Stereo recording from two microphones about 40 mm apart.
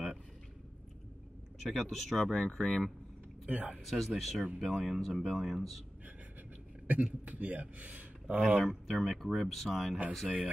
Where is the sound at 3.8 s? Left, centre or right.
Centre.